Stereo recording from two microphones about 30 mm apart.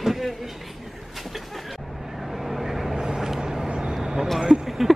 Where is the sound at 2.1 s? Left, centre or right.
Centre.